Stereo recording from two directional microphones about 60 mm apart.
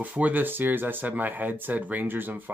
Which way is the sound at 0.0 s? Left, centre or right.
Right.